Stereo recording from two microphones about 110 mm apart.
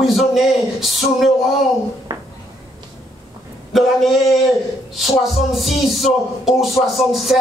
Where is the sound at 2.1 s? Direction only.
40° right (ahead or behind).